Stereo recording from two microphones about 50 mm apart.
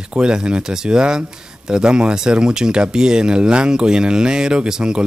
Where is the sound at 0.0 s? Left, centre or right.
Centre.